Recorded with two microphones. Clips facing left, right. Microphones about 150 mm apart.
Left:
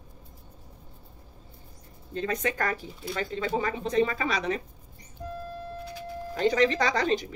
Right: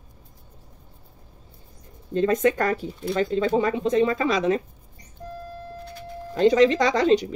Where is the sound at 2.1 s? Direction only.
40° right (ahead or behind).